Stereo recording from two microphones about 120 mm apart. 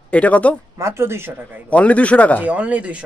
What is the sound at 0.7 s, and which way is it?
Speech, 25° right (ahead or behind).